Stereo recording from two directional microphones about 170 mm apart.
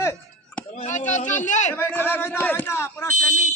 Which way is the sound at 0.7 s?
45° left (ahead or behind).